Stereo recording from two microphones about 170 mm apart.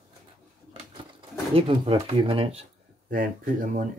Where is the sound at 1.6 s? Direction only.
35° right (ahead or behind).